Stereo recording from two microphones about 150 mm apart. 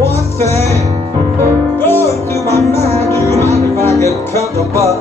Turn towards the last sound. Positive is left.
turn(degrees=20)  # may be behind; listen again after turning